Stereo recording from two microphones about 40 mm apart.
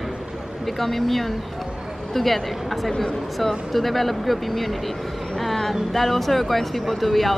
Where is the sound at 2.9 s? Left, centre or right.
Centre.